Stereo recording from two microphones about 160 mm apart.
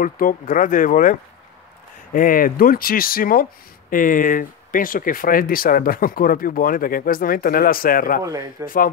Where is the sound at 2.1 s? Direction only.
60° left (ahead or behind).